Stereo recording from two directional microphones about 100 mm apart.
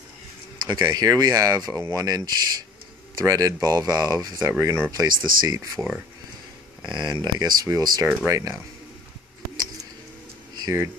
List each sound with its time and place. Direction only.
0.7 s speech: 45° right (ahead or behind)
5.8 s speech: 15° right (ahead or behind)
6.8 s speech: 50° right (ahead or behind); by 8.5 s 35° right (ahead or behind)
10.6 s speech: 35° right (ahead or behind)